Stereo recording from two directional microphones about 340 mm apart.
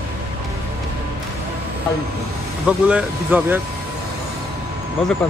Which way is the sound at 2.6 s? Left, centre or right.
Centre.